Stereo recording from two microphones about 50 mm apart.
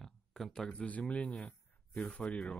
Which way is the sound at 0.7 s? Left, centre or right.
Left.